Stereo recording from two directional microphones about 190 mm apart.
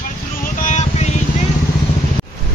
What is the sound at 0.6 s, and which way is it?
Vehicle, 40° left (ahead or behind).